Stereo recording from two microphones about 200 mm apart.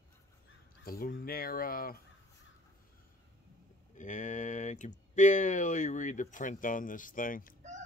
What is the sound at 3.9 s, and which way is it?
Speech, 40° left (ahead or behind).